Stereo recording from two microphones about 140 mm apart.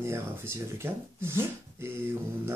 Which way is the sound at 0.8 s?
20° right (ahead or behind).